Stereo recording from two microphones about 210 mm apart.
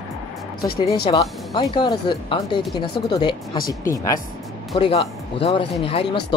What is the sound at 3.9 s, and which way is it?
Speech, 15° left (ahead or behind).